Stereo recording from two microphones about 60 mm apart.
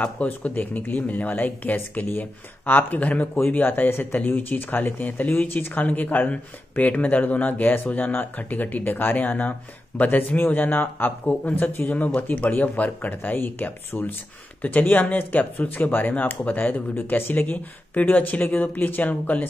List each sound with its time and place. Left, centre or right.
0.0 s a man's voice: left